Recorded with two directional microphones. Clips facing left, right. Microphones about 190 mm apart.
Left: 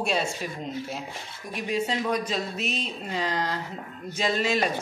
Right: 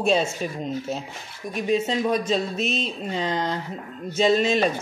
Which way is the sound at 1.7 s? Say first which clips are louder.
Right 4 dB; 25° right (ahead or behind).